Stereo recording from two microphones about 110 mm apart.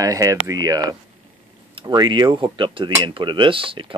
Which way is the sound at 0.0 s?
30° right (ahead or behind).